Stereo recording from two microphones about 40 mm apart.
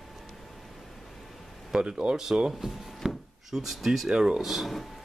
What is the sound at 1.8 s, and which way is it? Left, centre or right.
Speech, right.